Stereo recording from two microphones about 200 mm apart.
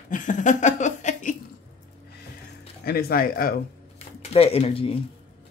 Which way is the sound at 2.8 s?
50° left (ahead or behind).